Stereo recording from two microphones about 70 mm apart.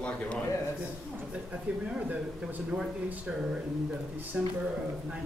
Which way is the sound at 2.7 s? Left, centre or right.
Centre.